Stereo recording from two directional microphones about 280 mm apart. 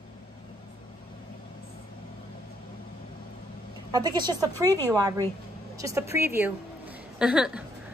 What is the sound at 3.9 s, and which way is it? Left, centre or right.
A woman's voice, centre.